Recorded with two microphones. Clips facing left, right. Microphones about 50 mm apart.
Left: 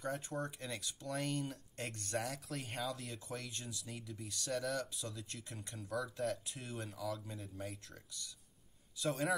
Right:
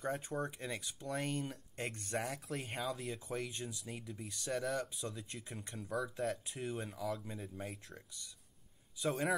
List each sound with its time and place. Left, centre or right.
0.0 s speech: centre